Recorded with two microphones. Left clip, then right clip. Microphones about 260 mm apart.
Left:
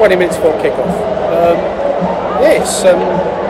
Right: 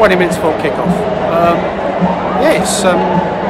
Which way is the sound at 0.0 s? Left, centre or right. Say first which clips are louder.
Even; centre.